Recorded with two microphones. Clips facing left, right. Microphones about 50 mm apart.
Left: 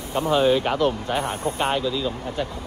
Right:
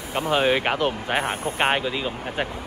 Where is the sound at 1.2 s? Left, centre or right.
Right.